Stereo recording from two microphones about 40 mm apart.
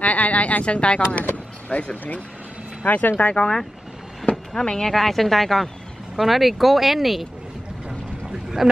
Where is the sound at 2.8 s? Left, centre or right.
Left.